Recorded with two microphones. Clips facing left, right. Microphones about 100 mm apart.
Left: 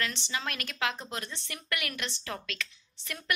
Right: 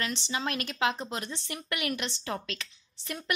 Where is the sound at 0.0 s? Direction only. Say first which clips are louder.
Right 2 dB; 20° right (ahead or behind).